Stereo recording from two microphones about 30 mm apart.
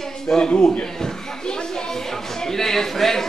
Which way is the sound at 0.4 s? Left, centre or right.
Left.